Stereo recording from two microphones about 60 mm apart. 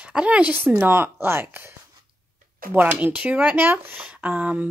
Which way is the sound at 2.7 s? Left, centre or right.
Right.